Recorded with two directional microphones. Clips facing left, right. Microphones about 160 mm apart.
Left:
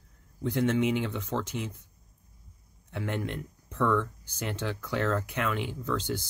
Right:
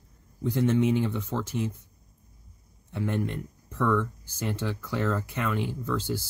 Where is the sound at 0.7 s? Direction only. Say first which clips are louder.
Right 3 dB; 70° left (ahead or behind).